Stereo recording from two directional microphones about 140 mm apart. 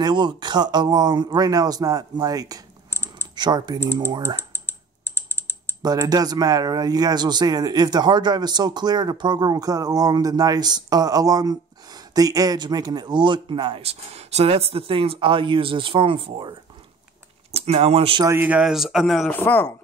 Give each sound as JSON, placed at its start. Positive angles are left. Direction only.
{"t": 0.0, "sound": "speech", "side_deg": -35}
{"t": 2.9, "sound": "typing", "side_deg": 15}
{"t": 3.3, "sound": "speech", "side_deg": -30}
{"t": 4.4, "sound": "typing", "side_deg": 15}
{"t": 5.8, "sound": "speech", "side_deg": -25}
{"t": 18.2, "sound": "speech", "side_deg": -15}
{"t": 19.4, "sound": "speech", "side_deg": 15}